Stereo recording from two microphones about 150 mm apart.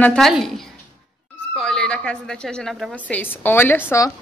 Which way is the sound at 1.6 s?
5° left (ahead or behind).